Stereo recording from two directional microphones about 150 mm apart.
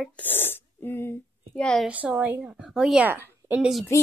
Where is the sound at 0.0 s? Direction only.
10° left (ahead or behind).